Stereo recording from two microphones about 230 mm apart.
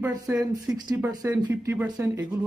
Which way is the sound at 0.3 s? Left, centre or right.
Centre.